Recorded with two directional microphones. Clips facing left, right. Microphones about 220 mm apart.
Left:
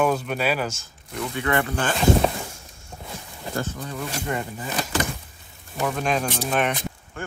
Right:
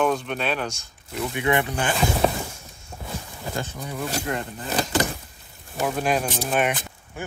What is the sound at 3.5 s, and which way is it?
Speech, 10° right (ahead or behind).